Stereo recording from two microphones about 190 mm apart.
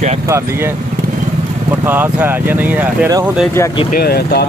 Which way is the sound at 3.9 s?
55° left (ahead or behind).